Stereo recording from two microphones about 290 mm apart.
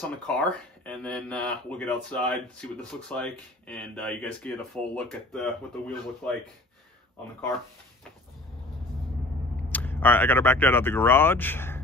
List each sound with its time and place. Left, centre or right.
0.3 s speech: centre
9.7 s speech: centre